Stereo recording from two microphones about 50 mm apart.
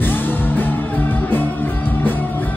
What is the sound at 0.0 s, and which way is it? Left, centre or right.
Music, left.